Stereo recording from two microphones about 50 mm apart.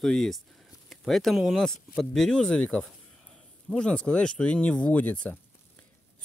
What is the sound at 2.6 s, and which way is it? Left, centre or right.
Speech, left.